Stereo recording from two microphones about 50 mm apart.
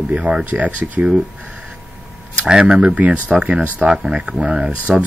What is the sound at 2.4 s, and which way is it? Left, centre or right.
Speech, centre.